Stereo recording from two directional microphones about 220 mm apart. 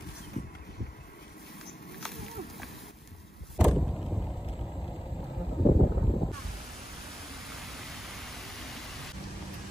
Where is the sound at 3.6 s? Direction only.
Centre (ahead or behind).